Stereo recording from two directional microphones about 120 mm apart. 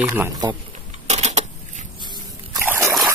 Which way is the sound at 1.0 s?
70° right (ahead or behind).